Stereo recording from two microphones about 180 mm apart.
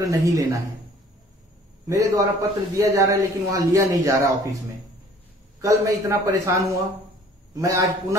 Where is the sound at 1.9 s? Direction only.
20° right (ahead or behind).